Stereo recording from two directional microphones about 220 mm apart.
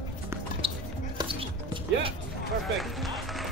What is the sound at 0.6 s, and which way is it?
Music, 25° right (ahead or behind).